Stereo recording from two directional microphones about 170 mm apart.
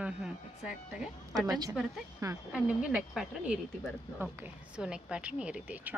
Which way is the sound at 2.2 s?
20° right (ahead or behind).